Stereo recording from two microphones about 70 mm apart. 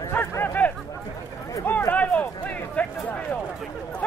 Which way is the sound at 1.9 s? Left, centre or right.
Left.